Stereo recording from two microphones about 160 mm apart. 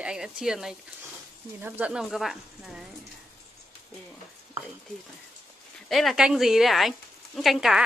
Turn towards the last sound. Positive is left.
turn(degrees=0)  # may be behind; listen again after turning